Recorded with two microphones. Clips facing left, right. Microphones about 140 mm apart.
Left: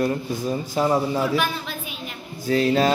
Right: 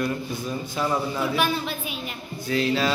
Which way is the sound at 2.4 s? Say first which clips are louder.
Left 4 dB; 40° left (ahead or behind).